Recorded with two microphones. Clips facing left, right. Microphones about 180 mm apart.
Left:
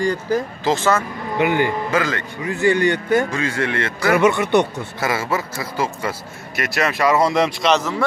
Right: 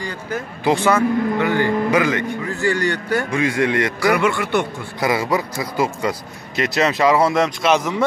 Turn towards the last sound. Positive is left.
turn(degrees=-10)  # may be behind; listen again after turning